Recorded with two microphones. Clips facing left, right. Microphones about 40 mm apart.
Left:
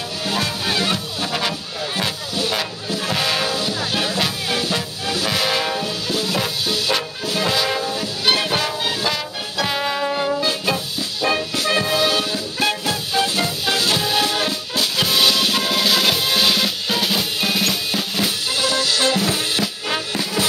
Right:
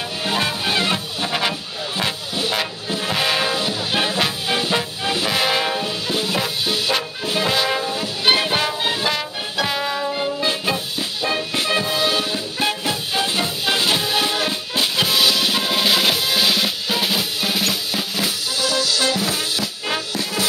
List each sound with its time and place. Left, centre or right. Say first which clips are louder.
0.2 s music: right 1 dB; centre
9.7 s music: left 3 dB; centre
10.4 s music: even; centre
11.2 s music: left 2 dB; centre
15.0 s drum: left 1 dB; centre
15.8 s music: right 1 dB; centre
16.2 s drum: left 1 dB; centre
18.5 s music: even; left
19.6 s music: left 1 dB; centre